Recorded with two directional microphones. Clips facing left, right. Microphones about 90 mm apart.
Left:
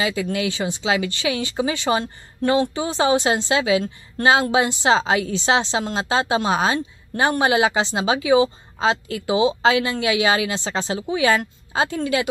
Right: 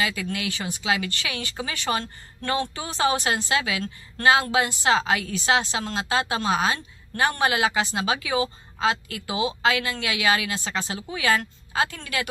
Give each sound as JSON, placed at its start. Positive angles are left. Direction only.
{"t": 0.0, "sound": "a woman's voice", "side_deg": 25}